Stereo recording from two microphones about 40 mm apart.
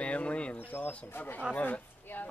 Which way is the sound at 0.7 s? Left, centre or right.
Left.